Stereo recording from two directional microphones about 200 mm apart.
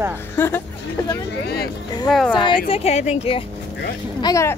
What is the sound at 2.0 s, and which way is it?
Speech, 5° left (ahead or behind).